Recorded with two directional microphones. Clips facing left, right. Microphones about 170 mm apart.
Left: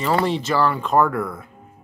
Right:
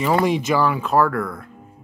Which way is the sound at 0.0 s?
10° right (ahead or behind).